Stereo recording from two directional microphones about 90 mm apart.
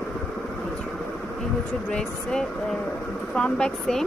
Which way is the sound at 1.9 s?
10° left (ahead or behind).